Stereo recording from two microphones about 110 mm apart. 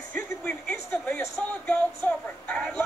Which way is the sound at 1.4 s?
10° left (ahead or behind).